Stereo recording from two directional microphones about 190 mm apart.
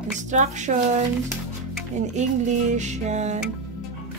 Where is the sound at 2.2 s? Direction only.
40° right (ahead or behind).